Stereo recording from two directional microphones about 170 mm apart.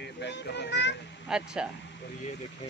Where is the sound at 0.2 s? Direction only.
85° left.